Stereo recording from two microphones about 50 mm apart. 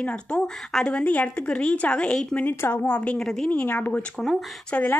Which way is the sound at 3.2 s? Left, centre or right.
Centre.